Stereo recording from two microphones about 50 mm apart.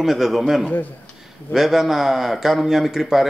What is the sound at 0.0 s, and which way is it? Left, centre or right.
Speech, centre.